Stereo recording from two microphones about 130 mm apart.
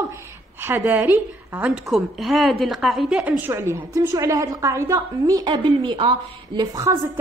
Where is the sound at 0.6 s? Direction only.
15° right (ahead or behind).